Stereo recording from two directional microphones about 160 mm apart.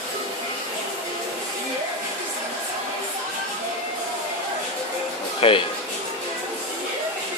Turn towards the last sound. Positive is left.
turn(degrees=35)  # may be behind; listen again after turning